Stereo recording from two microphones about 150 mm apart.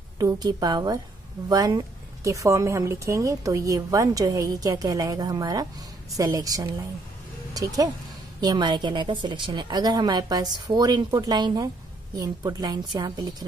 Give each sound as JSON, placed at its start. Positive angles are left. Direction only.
{"t": 0.2, "sound": "a woman's voice", "side_deg": -25}